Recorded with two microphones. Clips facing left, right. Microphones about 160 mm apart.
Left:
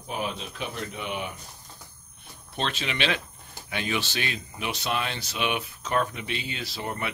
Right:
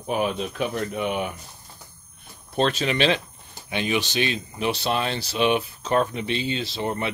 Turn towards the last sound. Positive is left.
turn(degrees=-25)  # may be behind; listen again after turning